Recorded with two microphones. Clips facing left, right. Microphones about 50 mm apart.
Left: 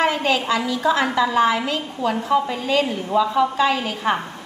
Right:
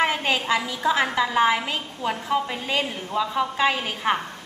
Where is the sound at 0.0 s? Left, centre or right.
Centre.